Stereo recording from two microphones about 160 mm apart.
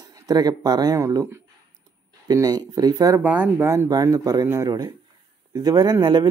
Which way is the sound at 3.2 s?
10° right (ahead or behind).